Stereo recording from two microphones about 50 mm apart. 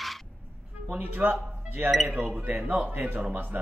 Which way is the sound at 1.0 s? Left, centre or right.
Right.